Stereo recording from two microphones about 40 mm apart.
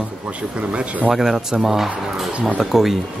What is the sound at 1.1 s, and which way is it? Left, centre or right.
A man's voice, centre.